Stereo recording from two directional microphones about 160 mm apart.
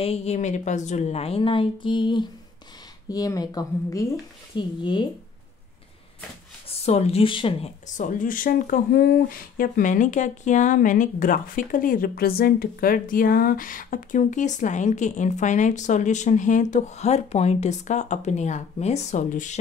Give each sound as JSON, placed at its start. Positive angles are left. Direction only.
{"t": 0.0, "sound": "speech", "side_deg": 40}
{"t": 6.7, "sound": "speech", "side_deg": 40}
{"t": 7.8, "sound": "speech", "side_deg": 55}